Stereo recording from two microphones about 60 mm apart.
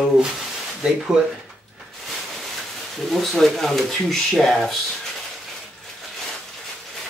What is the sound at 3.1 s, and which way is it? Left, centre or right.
Speech, centre.